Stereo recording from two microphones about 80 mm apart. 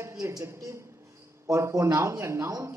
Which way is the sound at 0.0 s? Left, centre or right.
Right.